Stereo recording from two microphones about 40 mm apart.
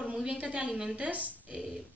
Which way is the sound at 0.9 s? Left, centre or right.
Right.